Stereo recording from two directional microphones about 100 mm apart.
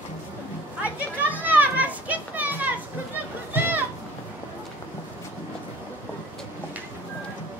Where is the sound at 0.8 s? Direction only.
15° right (ahead or behind).